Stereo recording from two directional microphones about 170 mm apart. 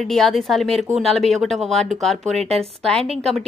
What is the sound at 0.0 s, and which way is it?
A woman's voice, centre (ahead or behind).